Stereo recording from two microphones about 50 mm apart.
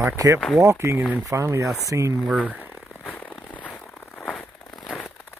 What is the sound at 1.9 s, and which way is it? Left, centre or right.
Speech, right.